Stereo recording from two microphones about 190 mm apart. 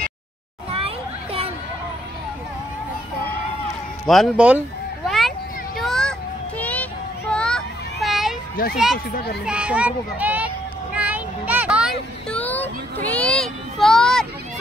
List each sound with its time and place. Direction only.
0.7 s children playing: 30° right (ahead or behind)
4.0 s cat: centre (ahead or behind)
5.8 s a sound: centre (ahead or behind)
6.6 s children playing: 10° left (ahead or behind)
8.7 s speech: centre (ahead or behind)
9.1 s a child's voice: 60° left (ahead or behind)
9.5 s a child's voice: 5° right (ahead or behind)
11.0 s a sound: 10° right (ahead or behind)
12.3 s a sound: 10° left (ahead or behind)